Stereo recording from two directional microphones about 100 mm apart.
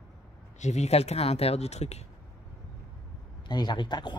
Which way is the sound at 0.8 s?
90° left.